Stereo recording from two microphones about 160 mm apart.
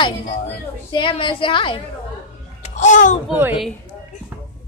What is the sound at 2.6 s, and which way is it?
Babbling, 50° left (ahead or behind).